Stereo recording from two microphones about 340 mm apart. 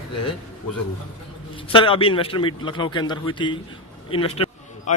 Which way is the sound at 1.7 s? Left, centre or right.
Centre.